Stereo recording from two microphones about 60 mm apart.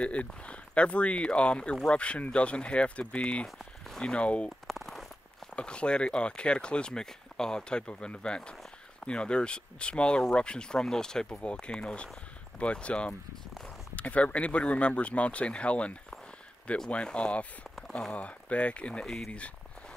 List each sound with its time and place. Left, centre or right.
0.0 s speech: left
3.4 s speech: centre
4.1 s speech: centre
4.6 s a sound: centre
5.6 s speech: centre
17.7 s a sound: centre
18.1 s speech: left
19.0 s speech: centre